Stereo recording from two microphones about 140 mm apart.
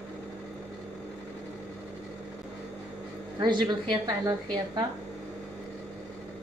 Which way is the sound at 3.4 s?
30° right (ahead or behind).